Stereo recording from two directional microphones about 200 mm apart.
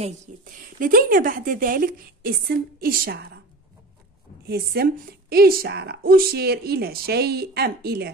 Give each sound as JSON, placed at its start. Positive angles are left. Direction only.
{"t": 0.0, "sound": "speech", "side_deg": -45}
{"t": 4.5, "sound": "speech", "side_deg": -50}